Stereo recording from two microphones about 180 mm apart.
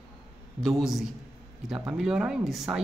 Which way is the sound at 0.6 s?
Centre (ahead or behind).